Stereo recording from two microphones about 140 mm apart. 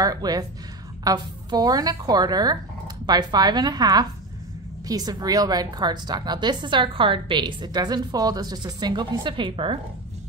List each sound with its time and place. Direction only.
0.0 s a woman's voice: 25° right (ahead or behind)